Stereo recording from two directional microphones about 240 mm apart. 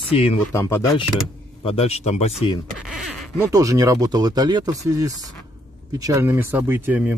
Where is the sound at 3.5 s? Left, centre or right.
Centre.